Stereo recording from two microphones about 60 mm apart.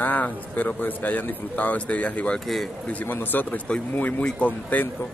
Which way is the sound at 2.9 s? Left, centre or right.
Left.